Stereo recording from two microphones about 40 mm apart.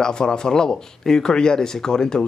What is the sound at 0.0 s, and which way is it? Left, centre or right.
Speech, centre.